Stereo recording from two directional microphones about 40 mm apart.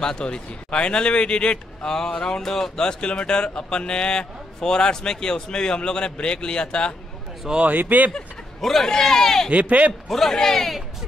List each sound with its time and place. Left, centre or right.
0.0 s a man's voice: centre
2.8 s a man's voice: left
7.6 s speech: right
8.5 s speech: centre
8.8 s speech: centre
9.5 s speech: right
10.0 s a man's voice: centre